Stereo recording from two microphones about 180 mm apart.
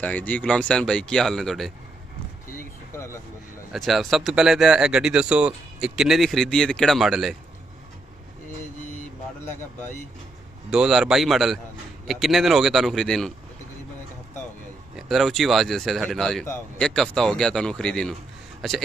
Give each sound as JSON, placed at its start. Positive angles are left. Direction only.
{"t": 0.0, "sound": "speech", "side_deg": 10}
{"t": 2.9, "sound": "a sound", "side_deg": 15}
{"t": 3.7, "sound": "speech", "side_deg": 0}
{"t": 8.9, "sound": "vehicle", "side_deg": 40}
{"t": 10.7, "sound": "speech", "side_deg": 0}
{"t": 15.0, "sound": "speech", "side_deg": 0}